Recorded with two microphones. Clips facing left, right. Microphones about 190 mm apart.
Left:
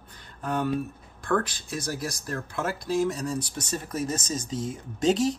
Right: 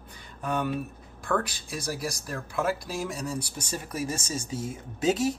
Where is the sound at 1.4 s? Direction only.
10° right (ahead or behind).